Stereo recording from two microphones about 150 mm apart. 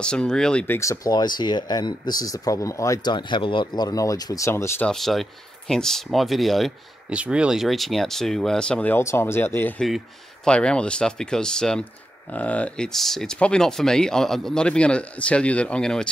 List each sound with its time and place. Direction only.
0.0 s speech: 5° left (ahead or behind)
0.7 s speech: 20° left (ahead or behind)
4.8 s speech: centre (ahead or behind)
9.8 s speech: centre (ahead or behind)